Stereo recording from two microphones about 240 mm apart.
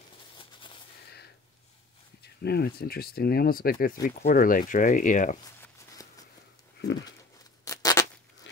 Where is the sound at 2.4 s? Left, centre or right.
Left.